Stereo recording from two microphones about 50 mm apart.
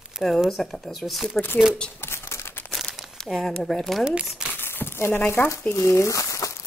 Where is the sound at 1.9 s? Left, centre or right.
Left.